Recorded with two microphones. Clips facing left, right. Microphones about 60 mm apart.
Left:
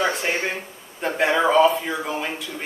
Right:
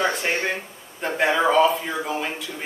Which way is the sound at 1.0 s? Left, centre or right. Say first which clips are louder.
Left 1 dB; centre.